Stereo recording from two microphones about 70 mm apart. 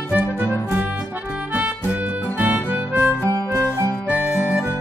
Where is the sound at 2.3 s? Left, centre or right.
Right.